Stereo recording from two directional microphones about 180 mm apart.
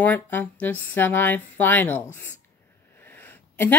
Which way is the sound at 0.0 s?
10° left (ahead or behind).